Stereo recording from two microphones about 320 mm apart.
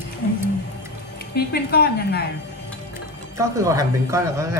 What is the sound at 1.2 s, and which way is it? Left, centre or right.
A woman's voice, left.